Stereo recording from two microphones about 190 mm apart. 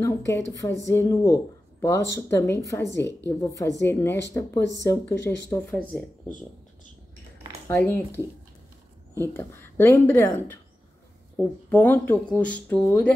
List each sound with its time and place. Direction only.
0.3 s speech: 15° left (ahead or behind)
7.6 s speech: 10° left (ahead or behind)